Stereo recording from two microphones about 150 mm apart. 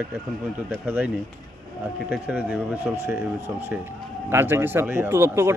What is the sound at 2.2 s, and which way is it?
Speech, 10° right (ahead or behind).